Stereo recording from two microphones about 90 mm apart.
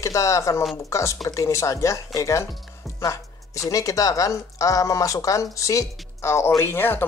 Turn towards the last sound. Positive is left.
turn(degrees=25)  # may be behind; listen again after turning